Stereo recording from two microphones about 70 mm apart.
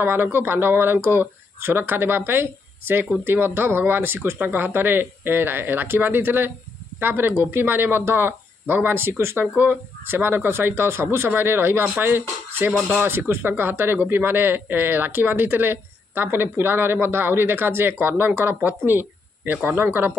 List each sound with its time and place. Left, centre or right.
0.0 s speech: right